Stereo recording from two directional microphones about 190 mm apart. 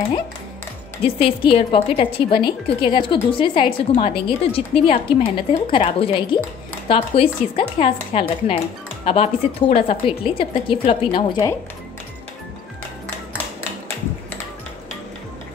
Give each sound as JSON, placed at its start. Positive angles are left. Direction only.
{"t": 1.0, "sound": "a woman's voice", "side_deg": 30}